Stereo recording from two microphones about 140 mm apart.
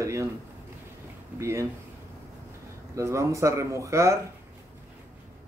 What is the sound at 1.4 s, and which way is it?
Speech, 20° right (ahead or behind).